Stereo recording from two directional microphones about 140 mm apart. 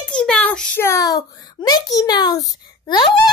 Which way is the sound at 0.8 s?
25° left (ahead or behind).